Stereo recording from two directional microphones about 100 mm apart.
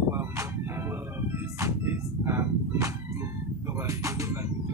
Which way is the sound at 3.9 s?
35° right (ahead or behind).